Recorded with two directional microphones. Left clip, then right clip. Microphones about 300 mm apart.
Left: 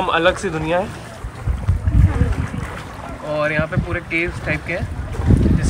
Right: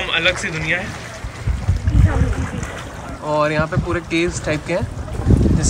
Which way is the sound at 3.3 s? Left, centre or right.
Centre.